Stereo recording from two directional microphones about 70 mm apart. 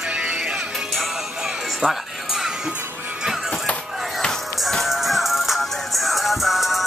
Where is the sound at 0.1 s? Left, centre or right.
Centre.